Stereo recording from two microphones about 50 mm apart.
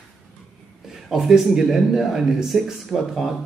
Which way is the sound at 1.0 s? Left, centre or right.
Centre.